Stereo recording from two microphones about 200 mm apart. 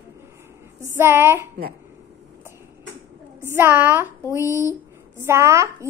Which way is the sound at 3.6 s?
10° right (ahead or behind).